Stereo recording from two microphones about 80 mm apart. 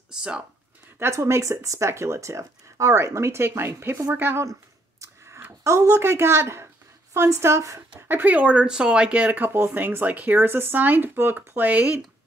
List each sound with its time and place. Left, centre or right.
0.1 s speech: centre
0.9 s speech: right
5.0 s a sound: right
7.2 s speech: right
8.1 s speech: right